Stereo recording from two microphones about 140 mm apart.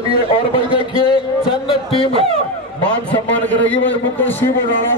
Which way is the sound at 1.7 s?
40° left (ahead or behind).